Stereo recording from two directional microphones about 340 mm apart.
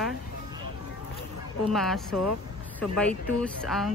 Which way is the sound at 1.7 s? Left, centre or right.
Centre.